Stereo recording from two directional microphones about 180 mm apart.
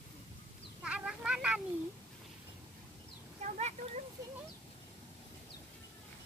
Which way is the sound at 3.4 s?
40° right (ahead or behind).